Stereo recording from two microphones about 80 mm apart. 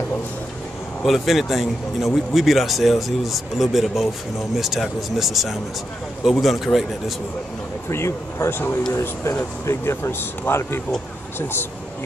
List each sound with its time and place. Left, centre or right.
1.0 s a man's voice: centre
7.9 s speech: left